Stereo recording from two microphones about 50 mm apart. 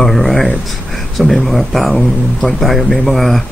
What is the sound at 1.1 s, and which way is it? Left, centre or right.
Speech, centre.